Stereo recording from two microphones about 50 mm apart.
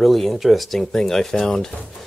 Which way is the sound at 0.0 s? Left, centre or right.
Centre.